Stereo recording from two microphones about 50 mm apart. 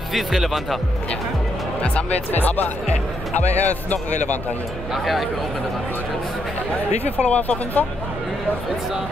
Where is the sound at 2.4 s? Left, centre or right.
Left.